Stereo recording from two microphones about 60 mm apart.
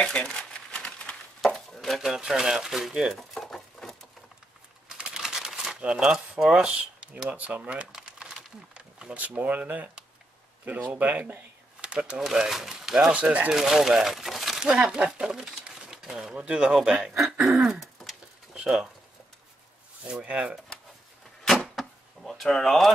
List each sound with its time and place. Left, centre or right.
0.0 s crumpling: centre
1.4 s speech: centre
3.2 s a sound: centre
4.9 s a sound: centre
5.8 s speech: centre
7.9 s crumpling: centre
9.1 s speech: right
12.3 s speech: centre
13.1 s speech: right
13.5 s speech: centre
17.5 s a sound: centre
18.5 s a sound: centre
20.1 s speech: centre
21.5 s door: centre